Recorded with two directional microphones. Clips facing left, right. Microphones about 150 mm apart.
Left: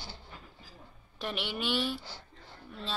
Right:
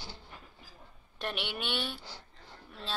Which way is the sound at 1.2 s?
Centre (ahead or behind).